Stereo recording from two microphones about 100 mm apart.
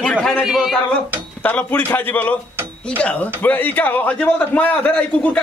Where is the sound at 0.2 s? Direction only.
Centre (ahead or behind).